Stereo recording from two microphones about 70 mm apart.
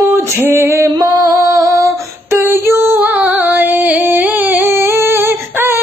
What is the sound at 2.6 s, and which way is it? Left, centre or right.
Music, right.